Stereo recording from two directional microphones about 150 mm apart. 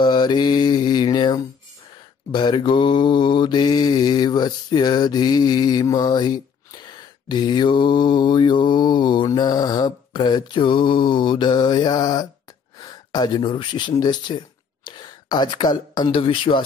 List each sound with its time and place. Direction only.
0.0 s mantra: 30° left (ahead or behind)
12.8 s speech: 30° left (ahead or behind)